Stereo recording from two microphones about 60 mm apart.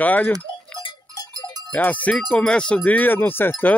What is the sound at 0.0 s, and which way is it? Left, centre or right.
Speech, left.